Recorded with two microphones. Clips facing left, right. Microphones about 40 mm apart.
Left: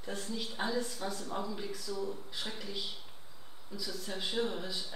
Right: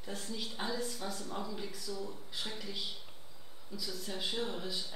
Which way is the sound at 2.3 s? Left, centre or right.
Centre.